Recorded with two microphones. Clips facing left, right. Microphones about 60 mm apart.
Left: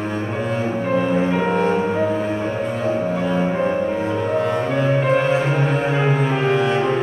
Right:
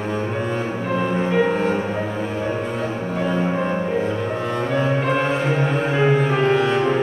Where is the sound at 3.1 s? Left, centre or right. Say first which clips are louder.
Left 1 dB; centre.